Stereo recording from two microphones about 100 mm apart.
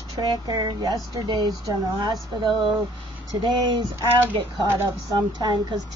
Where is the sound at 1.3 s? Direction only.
50° right (ahead or behind).